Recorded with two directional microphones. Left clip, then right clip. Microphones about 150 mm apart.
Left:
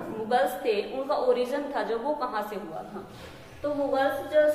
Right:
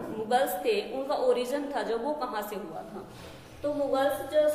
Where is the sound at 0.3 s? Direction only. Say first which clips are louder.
Left 1 dB; 10° right (ahead or behind).